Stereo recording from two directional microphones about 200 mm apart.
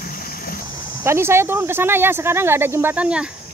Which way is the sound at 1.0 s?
15° right (ahead or behind).